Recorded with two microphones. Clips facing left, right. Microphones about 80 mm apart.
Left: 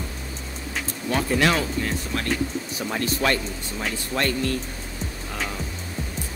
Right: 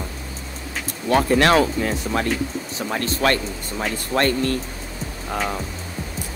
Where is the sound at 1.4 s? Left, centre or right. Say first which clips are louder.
Right 5 dB; right.